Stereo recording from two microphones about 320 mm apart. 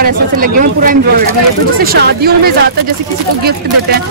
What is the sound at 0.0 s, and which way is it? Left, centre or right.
Speech, right.